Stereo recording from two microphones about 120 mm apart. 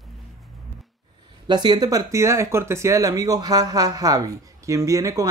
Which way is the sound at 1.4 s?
35° right (ahead or behind).